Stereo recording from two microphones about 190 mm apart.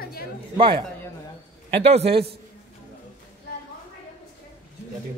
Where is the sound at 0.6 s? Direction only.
30° right (ahead or behind).